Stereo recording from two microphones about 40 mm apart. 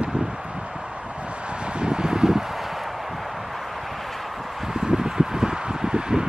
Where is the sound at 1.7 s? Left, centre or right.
Right.